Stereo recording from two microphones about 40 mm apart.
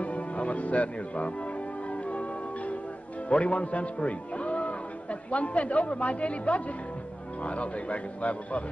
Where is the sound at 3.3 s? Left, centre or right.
Left.